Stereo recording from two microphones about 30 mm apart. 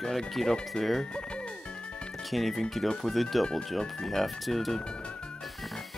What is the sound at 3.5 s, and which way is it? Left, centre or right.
Speech, centre.